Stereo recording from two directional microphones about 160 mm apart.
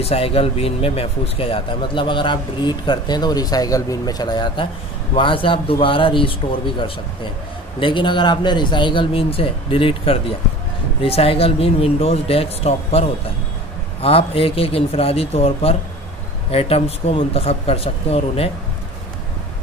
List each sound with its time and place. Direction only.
0.0 s a man's voice: 35° left (ahead or behind)
7.8 s a man's voice: 30° left (ahead or behind)
14.0 s a man's voice: 35° left (ahead or behind)